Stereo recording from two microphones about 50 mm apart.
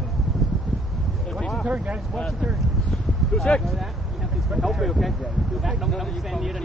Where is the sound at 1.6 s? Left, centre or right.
Right.